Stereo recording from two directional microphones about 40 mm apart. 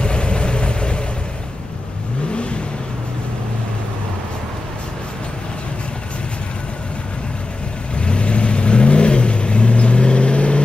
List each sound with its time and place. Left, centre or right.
0.0 s vehicle: left
7.9 s vehicle: left